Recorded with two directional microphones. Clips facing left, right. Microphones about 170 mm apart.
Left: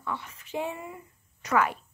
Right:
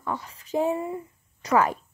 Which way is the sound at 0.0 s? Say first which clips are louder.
Right 4 dB; 40° right (ahead or behind).